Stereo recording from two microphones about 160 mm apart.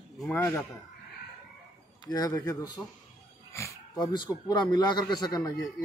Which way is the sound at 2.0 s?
20° left (ahead or behind).